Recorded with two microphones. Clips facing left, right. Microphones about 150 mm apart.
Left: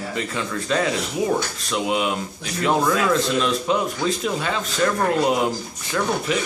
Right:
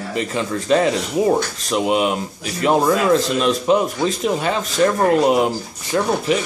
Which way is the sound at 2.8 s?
25° right (ahead or behind).